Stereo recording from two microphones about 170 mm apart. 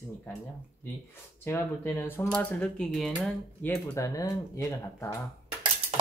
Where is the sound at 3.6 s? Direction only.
15° left (ahead or behind).